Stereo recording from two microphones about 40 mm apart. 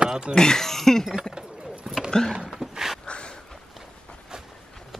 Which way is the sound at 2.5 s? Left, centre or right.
Centre.